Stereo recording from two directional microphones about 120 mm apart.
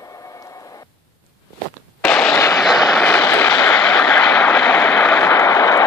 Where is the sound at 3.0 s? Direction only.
15° left (ahead or behind).